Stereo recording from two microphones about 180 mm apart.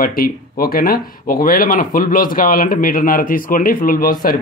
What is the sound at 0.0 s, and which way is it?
Speech, 55° left (ahead or behind).